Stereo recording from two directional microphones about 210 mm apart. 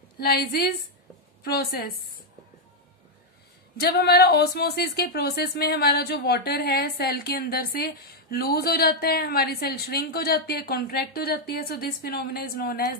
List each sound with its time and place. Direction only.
0.2 s speech: 45° left (ahead or behind)
3.8 s speech: 50° left (ahead or behind)